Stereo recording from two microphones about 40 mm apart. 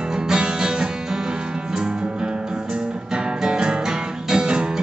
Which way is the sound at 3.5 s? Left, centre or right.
Right.